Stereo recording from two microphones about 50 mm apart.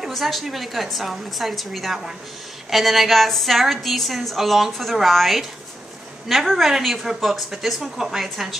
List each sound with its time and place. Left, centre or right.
0.1 s a woman's voice: centre